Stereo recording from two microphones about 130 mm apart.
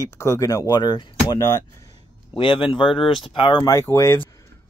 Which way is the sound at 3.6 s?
20° left (ahead or behind).